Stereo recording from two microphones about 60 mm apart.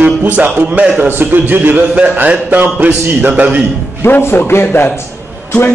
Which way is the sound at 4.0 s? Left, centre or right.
Left.